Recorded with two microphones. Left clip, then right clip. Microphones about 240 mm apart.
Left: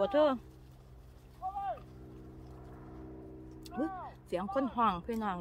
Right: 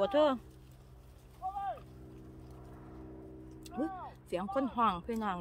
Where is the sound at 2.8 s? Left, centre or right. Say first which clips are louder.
Left 1 dB; centre.